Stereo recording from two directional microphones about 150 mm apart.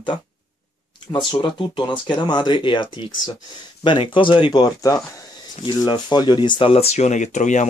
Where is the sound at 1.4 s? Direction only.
30° left (ahead or behind).